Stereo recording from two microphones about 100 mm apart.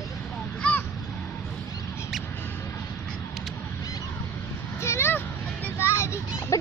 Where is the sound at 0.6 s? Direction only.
15° left (ahead or behind).